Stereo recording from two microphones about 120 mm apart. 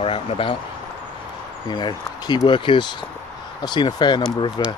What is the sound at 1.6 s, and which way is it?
Speech, 40° left (ahead or behind).